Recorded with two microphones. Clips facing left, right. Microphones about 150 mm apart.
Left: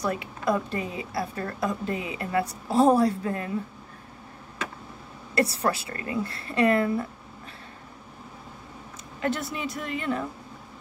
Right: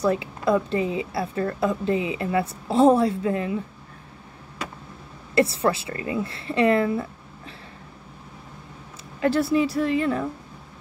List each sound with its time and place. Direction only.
0.0 s a woman's voice: 25° right (ahead or behind)
5.3 s a woman's voice: 25° right (ahead or behind)
9.2 s a woman's voice: 35° right (ahead or behind)